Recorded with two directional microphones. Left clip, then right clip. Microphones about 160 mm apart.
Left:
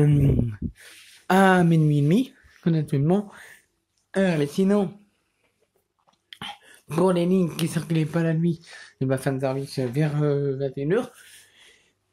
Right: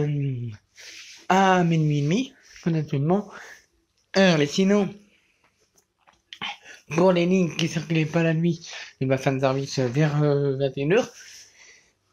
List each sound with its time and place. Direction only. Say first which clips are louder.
0.0 s speech: left 6 dB; 80° left
1.2 s speech: even; 45° left (ahead or behind)
4.1 s speech: right 4 dB; 15° left (ahead or behind)
6.3 s speech: right 4 dB; 30° left (ahead or behind)
9.4 s speech: right 3 dB; 15° left (ahead or behind)
11.5 s a sound: right 2 dB; 30° left (ahead or behind)